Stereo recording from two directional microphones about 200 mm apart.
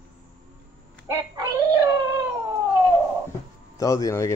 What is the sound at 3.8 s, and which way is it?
Speech, 15° left (ahead or behind).